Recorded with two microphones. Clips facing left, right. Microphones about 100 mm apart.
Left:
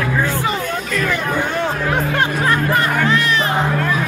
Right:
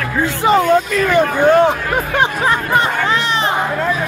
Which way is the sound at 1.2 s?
50° right (ahead or behind).